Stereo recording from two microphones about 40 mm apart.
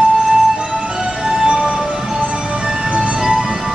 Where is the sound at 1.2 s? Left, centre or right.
Centre.